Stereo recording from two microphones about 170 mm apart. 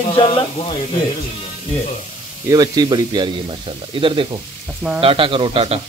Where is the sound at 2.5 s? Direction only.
25° right (ahead or behind).